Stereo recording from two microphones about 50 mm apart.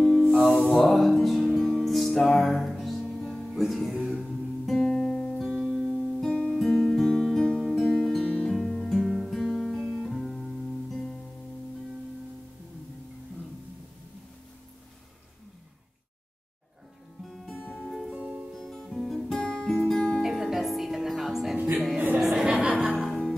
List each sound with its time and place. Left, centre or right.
0.0 s music: centre
5.4 s music: centre
6.2 s music: centre
6.5 s music: centre
17.6 s music: left
18.1 s music: centre
18.5 s music: centre
19.4 s music: centre
20.2 s music: centre
21.5 s music: right
22.2 s music: centre